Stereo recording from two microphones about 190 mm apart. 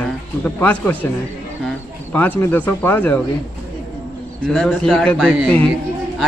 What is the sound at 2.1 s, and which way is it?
Speech, 10° left (ahead or behind).